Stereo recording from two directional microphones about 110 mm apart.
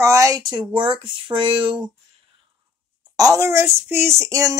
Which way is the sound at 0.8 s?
50° right (ahead or behind).